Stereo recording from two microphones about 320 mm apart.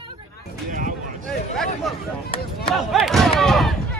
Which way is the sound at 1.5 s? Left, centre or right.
Centre.